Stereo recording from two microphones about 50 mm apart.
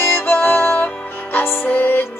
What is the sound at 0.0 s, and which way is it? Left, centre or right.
Music, left.